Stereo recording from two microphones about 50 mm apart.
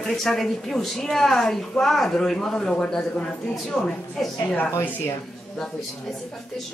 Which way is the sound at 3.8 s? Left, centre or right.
Left.